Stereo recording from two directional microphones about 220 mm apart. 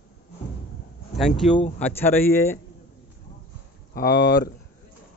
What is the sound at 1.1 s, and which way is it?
Speech, centre (ahead or behind).